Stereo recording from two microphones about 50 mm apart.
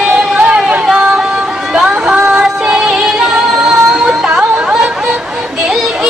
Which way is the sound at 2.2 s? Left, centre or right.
Centre.